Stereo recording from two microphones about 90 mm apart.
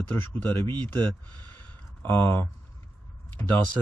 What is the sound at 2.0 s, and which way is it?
Speech, 25° left (ahead or behind).